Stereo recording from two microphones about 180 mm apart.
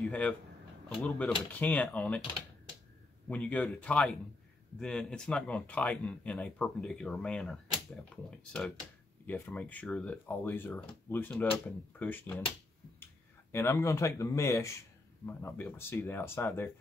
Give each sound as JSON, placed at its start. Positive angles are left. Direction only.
{"t": 0.0, "sound": "speech", "side_deg": 5}
{"t": 3.3, "sound": "speech", "side_deg": 5}
{"t": 9.2, "sound": "speech", "side_deg": 10}